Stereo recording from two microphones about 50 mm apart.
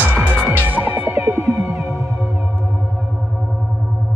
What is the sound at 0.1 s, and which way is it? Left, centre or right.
Music, right.